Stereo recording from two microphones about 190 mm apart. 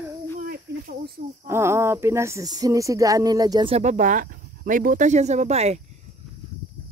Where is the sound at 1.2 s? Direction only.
60° right (ahead or behind).